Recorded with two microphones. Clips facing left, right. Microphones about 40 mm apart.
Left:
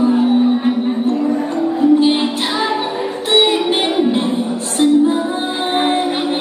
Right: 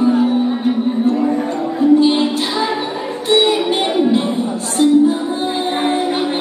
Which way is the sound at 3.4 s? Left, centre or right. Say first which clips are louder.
Even; left.